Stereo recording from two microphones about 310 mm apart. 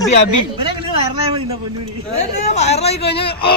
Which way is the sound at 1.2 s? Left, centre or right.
Centre.